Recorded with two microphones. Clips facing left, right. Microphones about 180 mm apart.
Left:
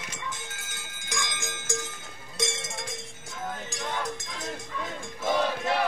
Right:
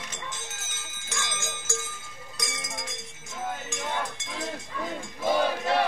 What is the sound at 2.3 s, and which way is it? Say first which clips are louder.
Cowbell: left 5 dB; 25° left (ahead or behind).